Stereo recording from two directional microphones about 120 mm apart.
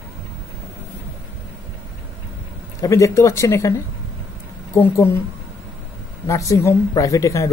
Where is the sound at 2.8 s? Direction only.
25° left (ahead or behind).